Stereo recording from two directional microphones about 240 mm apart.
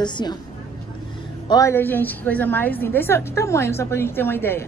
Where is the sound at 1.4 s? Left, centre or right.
Centre.